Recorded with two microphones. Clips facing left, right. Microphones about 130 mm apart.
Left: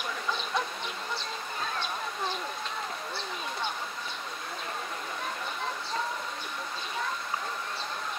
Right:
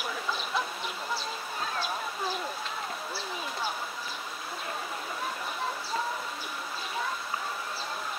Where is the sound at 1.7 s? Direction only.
5° right (ahead or behind).